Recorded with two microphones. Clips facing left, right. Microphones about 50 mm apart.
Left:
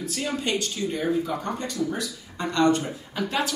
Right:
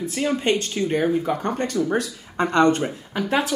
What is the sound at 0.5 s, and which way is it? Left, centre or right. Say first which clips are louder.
Speech: right 6 dB; right.